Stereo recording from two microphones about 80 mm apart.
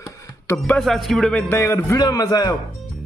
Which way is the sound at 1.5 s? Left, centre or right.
Left.